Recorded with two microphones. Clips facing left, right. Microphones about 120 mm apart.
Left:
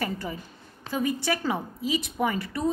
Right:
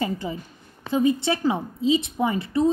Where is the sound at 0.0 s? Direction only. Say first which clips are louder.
Right 4 dB; 20° right (ahead or behind).